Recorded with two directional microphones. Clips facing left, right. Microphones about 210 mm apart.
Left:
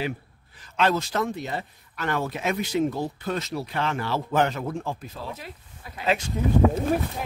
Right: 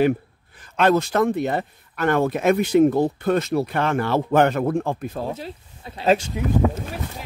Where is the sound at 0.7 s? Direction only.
55° right (ahead or behind).